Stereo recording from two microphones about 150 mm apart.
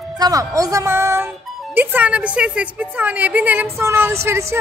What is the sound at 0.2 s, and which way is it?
A woman's voice, 25° right (ahead or behind).